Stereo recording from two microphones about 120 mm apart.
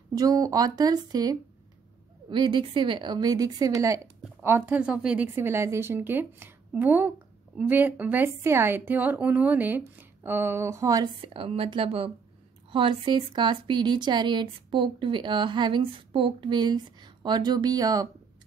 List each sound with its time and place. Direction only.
0.1 s a woman's voice: 30° right (ahead or behind)
11.1 s a woman's voice: 50° right (ahead or behind); by 18.0 s 30° right (ahead or behind)